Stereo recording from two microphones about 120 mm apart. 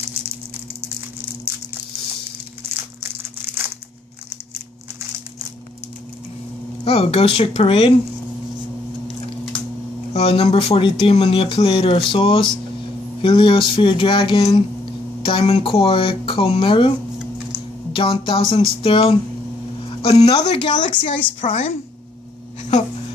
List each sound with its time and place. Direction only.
2.7 s crumpling: 15° right (ahead or behind)
6.8 s speech: 55° left (ahead or behind)
10.1 s speech: 50° left (ahead or behind)
17.9 s speech: 45° left (ahead or behind); by 20.5 s 60° left (ahead or behind)
20.5 s speech: 40° left (ahead or behind)
21.5 s a woman's voice: 60° left (ahead or behind)
22.6 s a sound: 75° left (ahead or behind)